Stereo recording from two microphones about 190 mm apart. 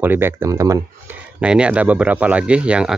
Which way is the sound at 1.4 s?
5° right (ahead or behind).